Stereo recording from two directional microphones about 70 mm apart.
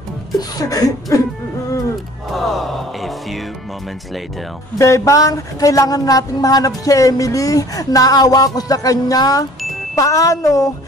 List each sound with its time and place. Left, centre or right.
0.4 s speech: left
2.3 s music: centre
4.7 s speech: left